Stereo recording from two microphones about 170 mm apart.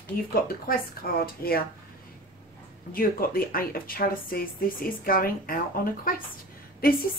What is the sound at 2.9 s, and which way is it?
Speech, 60° left (ahead or behind).